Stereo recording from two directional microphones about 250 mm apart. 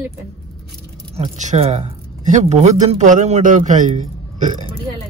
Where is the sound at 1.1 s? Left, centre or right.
Right.